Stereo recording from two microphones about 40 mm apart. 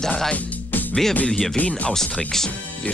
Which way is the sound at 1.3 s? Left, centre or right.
Centre.